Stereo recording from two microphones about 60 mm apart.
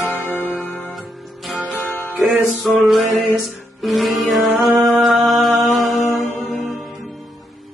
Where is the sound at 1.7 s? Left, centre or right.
Left.